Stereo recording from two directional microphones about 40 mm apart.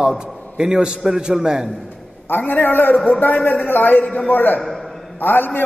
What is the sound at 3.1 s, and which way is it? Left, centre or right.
A man's voice, left.